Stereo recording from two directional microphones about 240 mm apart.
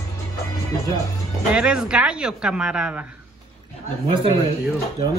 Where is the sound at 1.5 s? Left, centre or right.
Centre.